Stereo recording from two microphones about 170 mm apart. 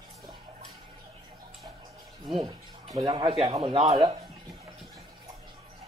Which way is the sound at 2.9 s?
25° right (ahead or behind).